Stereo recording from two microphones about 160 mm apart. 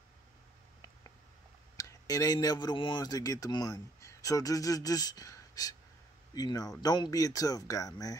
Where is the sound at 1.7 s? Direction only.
20° left (ahead or behind).